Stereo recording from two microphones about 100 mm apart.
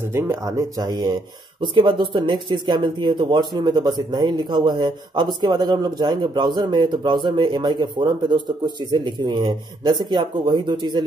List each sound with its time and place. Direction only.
0.1 s speech: 25° right (ahead or behind); by 1.1 s 40° right (ahead or behind)
1.6 s speech: 50° right (ahead or behind)